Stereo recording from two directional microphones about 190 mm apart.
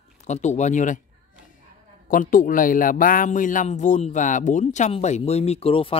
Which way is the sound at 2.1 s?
45° left (ahead or behind).